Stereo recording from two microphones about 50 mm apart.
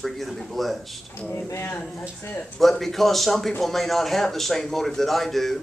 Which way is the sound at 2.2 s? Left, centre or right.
Left.